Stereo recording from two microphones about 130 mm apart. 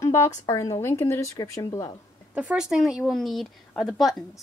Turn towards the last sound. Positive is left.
turn(degrees=0)  # may be behind; listen again after turning